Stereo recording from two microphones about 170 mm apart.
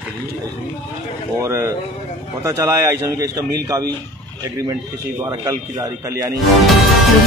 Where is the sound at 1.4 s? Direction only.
15° right (ahead or behind).